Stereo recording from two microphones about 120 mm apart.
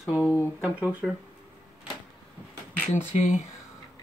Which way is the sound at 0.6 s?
10° right (ahead or behind).